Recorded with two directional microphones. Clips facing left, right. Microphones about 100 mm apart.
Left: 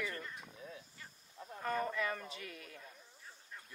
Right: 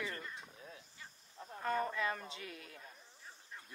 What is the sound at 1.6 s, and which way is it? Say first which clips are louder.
Speech: right 1 dB; 30° right (ahead or behind).